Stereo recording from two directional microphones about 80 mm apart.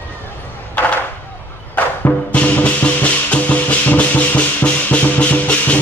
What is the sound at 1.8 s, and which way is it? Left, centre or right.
Music, centre.